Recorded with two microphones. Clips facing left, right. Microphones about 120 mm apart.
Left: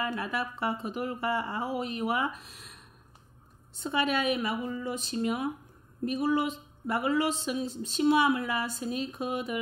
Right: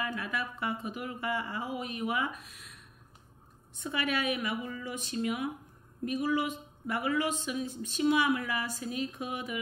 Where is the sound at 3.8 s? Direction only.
25° left (ahead or behind).